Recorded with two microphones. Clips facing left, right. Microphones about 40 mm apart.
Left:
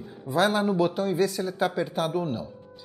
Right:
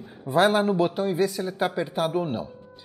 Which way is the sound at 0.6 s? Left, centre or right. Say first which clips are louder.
Right 1 dB; centre.